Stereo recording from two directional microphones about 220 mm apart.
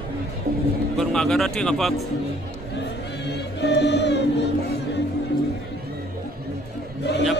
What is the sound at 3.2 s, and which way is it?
Music, 50° left (ahead or behind).